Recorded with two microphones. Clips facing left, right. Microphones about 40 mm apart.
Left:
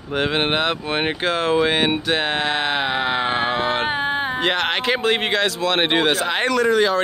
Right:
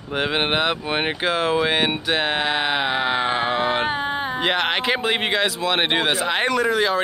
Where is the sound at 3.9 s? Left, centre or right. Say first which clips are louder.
Left 2 dB; left.